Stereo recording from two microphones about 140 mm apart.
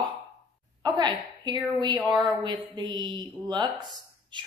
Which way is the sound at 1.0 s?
30° right (ahead or behind).